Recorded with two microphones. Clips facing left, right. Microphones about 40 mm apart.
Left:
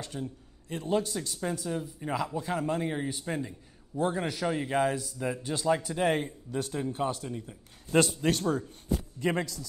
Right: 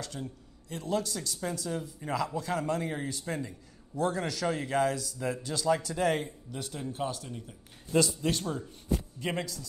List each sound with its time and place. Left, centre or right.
0.1 s a man's voice: centre
0.7 s a man's voice: left
2.0 s a man's voice: centre; by 6.8 s left
6.9 s a man's voice: left
7.2 s speech: centre
7.9 s a man's voice: left